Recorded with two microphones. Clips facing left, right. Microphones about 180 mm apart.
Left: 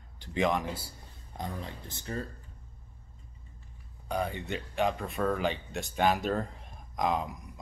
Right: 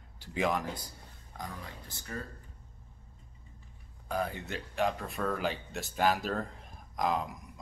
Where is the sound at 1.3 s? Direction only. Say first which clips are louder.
Left 5 dB; 25° left (ahead or behind).